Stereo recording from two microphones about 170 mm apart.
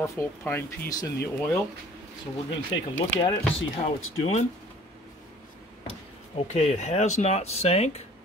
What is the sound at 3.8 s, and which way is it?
Speech, 40° left (ahead or behind).